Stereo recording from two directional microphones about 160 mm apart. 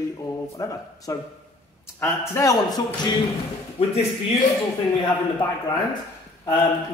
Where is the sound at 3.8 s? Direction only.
40° left (ahead or behind).